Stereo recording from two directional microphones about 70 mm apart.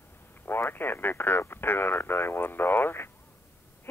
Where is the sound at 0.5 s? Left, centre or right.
Left.